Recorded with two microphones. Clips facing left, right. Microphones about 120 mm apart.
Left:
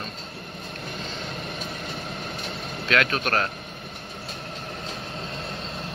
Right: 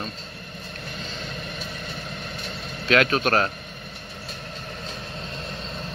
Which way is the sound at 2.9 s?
25° right (ahead or behind).